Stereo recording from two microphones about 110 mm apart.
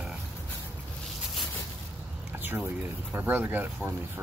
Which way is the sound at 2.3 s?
15° right (ahead or behind).